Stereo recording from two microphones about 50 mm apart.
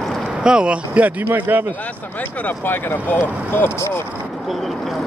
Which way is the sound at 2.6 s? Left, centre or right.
Left.